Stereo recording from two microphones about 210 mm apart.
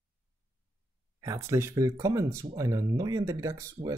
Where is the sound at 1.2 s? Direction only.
15° right (ahead or behind).